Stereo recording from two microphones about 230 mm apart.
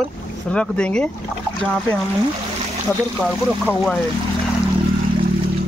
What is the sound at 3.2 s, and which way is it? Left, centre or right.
Speech, centre.